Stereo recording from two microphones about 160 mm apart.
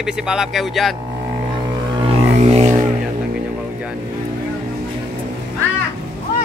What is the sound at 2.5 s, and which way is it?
Music, 45° right (ahead or behind).